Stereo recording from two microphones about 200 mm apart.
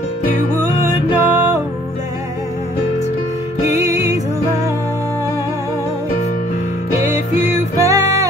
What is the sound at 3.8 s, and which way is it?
Music, 15° right (ahead or behind).